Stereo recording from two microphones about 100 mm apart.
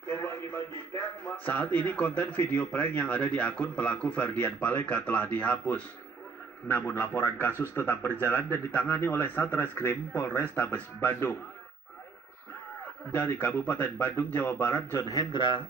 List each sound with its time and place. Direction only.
0.0 s a man's voice: 25° left (ahead or behind)
13.1 s a man's voice: 20° left (ahead or behind)
15.0 s speech: 35° left (ahead or behind)
15.3 s speech: 55° left (ahead or behind)